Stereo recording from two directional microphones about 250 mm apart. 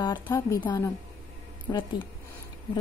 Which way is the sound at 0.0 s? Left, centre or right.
Centre.